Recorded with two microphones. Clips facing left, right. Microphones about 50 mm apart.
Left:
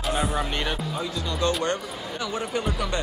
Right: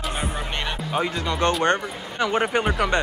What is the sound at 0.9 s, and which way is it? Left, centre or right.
A man's voice, right.